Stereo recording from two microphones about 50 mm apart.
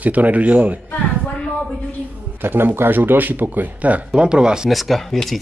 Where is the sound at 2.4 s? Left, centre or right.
Right.